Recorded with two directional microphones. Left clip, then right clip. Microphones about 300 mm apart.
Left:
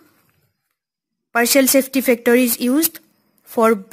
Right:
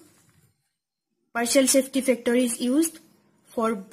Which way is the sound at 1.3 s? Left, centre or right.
Left.